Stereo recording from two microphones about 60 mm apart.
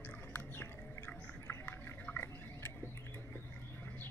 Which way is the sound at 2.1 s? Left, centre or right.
Left.